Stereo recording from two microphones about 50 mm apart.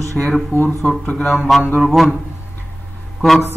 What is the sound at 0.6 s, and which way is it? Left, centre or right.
Speech, left.